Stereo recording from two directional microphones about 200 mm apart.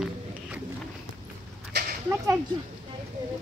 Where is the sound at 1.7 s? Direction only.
55° right (ahead or behind).